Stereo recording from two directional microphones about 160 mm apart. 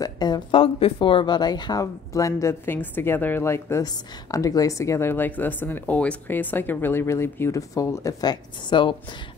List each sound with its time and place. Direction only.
0.0 s speech: 25° left (ahead or behind)